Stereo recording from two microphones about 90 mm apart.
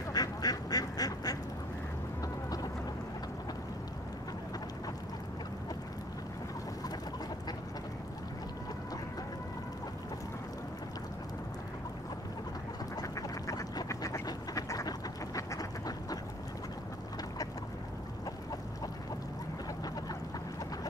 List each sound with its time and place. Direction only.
0.1 s quack: 45° left (ahead or behind)
12.9 s quack: 40° left (ahead or behind)